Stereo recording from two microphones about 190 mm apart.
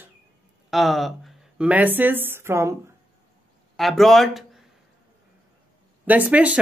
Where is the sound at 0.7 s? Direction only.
Centre (ahead or behind).